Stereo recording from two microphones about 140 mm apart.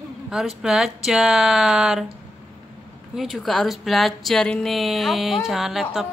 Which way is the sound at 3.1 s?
Centre (ahead or behind).